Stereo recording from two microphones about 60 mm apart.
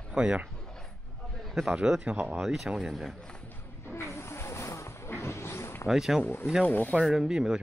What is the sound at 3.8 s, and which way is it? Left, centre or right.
Music, left.